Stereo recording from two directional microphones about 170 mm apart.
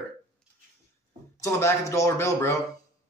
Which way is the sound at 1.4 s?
15° left (ahead or behind).